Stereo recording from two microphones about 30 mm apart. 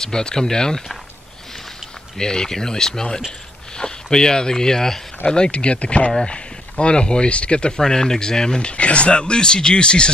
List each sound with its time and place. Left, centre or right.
0.0 s speech: left
2.1 s speech: left
5.2 s speech: left
6.2 s speech: left
7.8 s speech: centre